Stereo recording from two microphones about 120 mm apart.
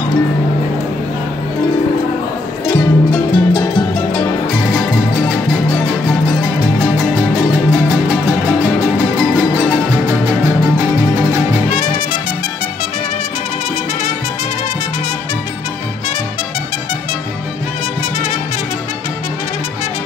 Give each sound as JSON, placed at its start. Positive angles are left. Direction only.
{"t": 2.7, "sound": "music", "side_deg": 35}